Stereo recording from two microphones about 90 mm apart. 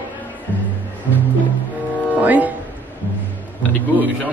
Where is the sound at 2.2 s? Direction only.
15° right (ahead or behind).